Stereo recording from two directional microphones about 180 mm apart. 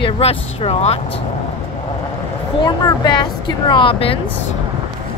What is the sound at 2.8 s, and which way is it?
Speech, 25° left (ahead or behind).